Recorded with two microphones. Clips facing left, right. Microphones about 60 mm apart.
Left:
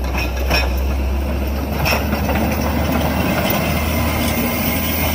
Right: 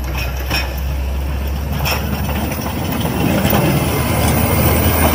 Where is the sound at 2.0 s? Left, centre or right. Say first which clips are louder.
Left 3 dB; left.